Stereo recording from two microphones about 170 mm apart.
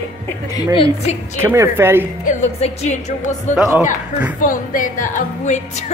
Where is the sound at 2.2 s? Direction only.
45° left (ahead or behind).